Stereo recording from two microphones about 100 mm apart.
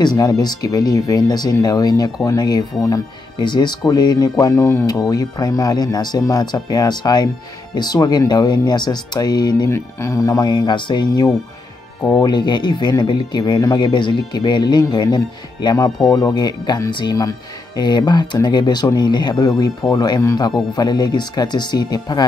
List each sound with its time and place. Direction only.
0.0 s speech: 40° left (ahead or behind)
9.7 s speech: 30° left (ahead or behind); by 22.2 s 45° left (ahead or behind)